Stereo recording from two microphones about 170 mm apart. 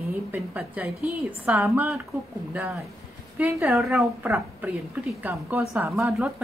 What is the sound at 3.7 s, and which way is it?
Speech, centre (ahead or behind).